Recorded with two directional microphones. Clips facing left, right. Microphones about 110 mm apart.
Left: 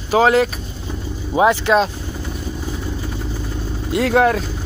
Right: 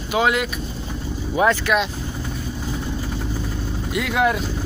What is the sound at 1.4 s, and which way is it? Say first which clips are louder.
Speech: left 4 dB; 25° left (ahead or behind).